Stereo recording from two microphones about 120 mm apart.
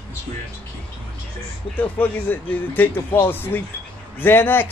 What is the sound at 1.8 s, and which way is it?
Speech, 15° left (ahead or behind).